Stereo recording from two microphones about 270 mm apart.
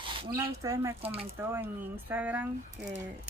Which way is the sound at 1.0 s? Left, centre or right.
Right.